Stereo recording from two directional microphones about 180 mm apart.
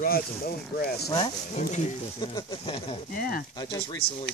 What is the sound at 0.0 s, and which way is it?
Speech, 55° left (ahead or behind).